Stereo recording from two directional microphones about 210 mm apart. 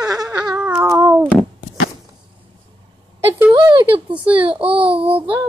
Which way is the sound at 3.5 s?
20° right (ahead or behind).